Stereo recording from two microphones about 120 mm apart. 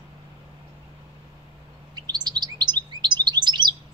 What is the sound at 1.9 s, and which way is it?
Chirp, 35° right (ahead or behind).